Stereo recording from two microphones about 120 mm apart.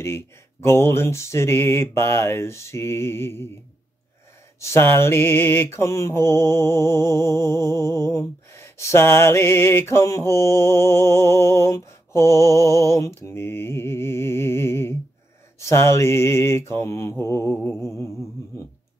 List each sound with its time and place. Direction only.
0.7 s mantra: 20° left (ahead or behind)
4.6 s mantra: 20° left (ahead or behind)